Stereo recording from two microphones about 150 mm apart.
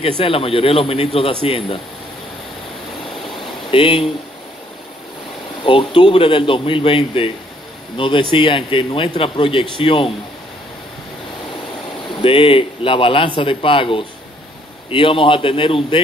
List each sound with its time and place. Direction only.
0.2 s a man's voice: 40° left (ahead or behind)
3.7 s a man's voice: 35° left (ahead or behind)
5.6 s a man's voice: 35° left (ahead or behind)
12.2 s a man's voice: 35° left (ahead or behind)